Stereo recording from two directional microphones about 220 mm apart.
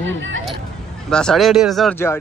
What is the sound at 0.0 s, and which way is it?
Speech, 55° right (ahead or behind).